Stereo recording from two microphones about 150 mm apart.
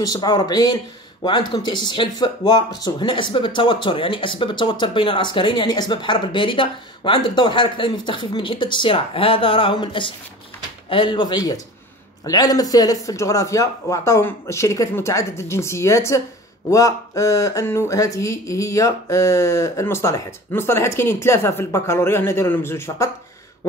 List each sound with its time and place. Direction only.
0.0 s speech: 25° left (ahead or behind)